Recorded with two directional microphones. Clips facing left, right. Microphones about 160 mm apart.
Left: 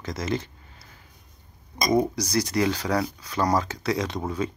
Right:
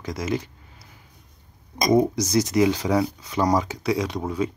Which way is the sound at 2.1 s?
20° right (ahead or behind).